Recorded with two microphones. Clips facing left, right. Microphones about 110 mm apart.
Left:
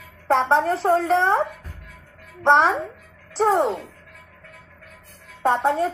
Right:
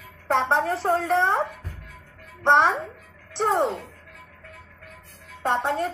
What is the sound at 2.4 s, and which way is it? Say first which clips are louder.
Speech: left 2 dB; centre (ahead or behind).